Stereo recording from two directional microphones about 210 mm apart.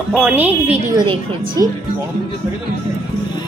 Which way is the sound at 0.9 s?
20° right (ahead or behind).